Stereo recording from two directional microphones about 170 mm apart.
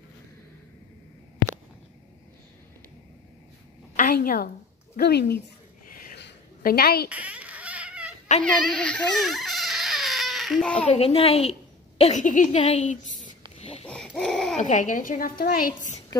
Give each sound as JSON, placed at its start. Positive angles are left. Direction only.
{"t": 3.9, "sound": "a sound", "side_deg": 55}
{"t": 4.9, "sound": "a woman's voice", "side_deg": 75}
{"t": 6.1, "sound": "a sound", "side_deg": 75}
{"t": 7.1, "sound": "baby laughter", "side_deg": -10}
{"t": 8.5, "sound": "baby cry", "side_deg": 5}
{"t": 10.9, "sound": "a woman's voice", "side_deg": 35}
{"t": 13.6, "sound": "a sound", "side_deg": 35}
{"t": 13.8, "sound": "hoot", "side_deg": 5}
{"t": 14.6, "sound": "a woman's voice", "side_deg": 50}